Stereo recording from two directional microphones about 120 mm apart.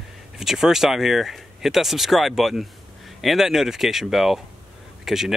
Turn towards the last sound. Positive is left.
turn(degrees=-5)  # may be behind; listen again after turning